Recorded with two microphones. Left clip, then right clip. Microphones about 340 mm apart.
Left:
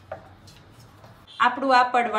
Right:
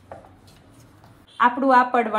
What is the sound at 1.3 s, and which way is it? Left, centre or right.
Speech, centre.